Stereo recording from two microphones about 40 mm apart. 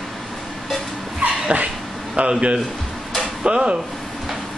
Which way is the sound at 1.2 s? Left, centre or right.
Right.